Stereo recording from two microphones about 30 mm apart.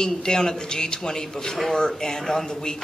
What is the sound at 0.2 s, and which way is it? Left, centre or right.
Speech, left.